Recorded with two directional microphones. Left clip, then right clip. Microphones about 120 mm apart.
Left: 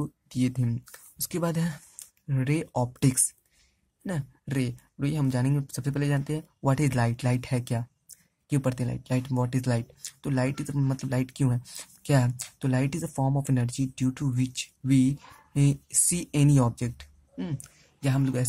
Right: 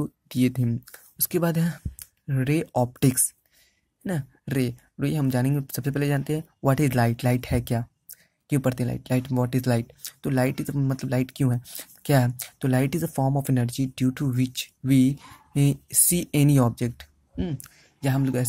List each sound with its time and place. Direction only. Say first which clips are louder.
0.3 s speech: right 5 dB; 35° right (ahead or behind)